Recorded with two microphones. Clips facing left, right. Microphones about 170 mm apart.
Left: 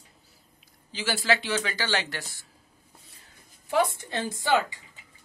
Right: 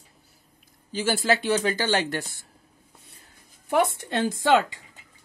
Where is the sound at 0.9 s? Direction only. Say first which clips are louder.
Right 3 dB; 50° right (ahead or behind).